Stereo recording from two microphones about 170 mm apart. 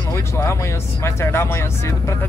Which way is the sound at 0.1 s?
15° left (ahead or behind).